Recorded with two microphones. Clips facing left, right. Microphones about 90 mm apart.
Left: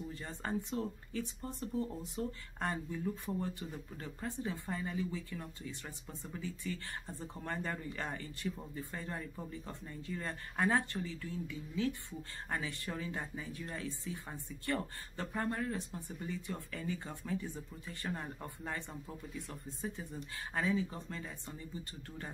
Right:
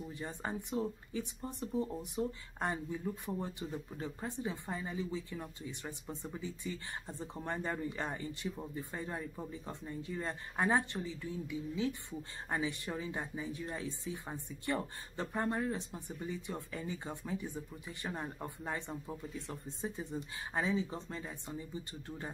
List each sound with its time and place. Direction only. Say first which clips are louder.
0.1 s speech: left 1 dB; 15° right (ahead or behind)